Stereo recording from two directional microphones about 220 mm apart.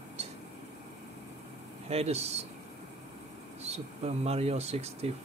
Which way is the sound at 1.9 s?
30° right (ahead or behind).